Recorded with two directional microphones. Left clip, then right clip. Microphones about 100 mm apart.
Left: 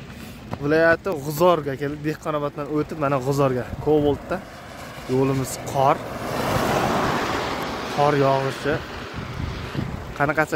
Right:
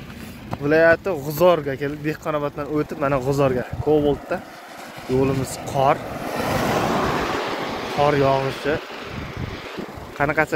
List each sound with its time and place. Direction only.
0.7 s speech: 35° left (ahead or behind); by 1.9 s 50° left (ahead or behind)
2.2 s speech: 30° left (ahead or behind)
3.0 s speech: 40° left (ahead or behind)
3.8 s speech: 55° left (ahead or behind)
5.1 s speech: 10° left (ahead or behind)
5.8 s speech: 55° left (ahead or behind)
6.1 s vehicle: 5° left (ahead or behind); by 10.5 s 30° left (ahead or behind)